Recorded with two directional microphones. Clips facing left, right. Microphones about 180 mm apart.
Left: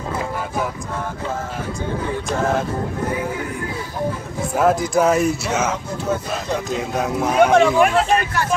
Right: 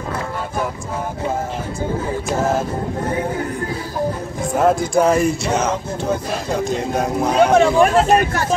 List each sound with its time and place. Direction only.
4.6 s speech: 5° left (ahead or behind)
7.8 s speech: 40° right (ahead or behind)